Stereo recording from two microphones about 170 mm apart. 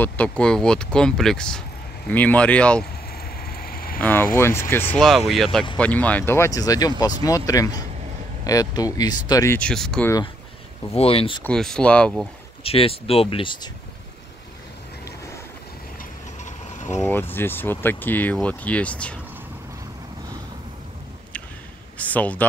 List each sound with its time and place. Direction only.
0.0 s speech: 5° left (ahead or behind)
3.3 s vehicle: 60° left (ahead or behind)
4.0 s speech: 10° left (ahead or behind)
4.9 s speech: centre (ahead or behind); by 9.6 s 20° left (ahead or behind)
9.6 s speech: 5° left (ahead or behind)
10.9 s speech: 35° left (ahead or behind)
11.4 s speech: 5° left (ahead or behind)
12.6 s speech: 35° left (ahead or behind)
16.7 s vehicle: 45° left (ahead or behind)
17.0 s speech: 10° left (ahead or behind)
21.9 s speech: 10° left (ahead or behind)